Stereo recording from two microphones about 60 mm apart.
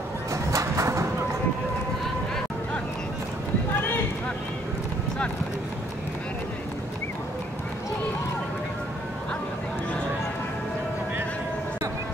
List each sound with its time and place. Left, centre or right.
0.3 s music: right